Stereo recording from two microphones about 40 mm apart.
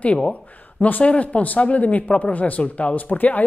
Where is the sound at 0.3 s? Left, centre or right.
Left.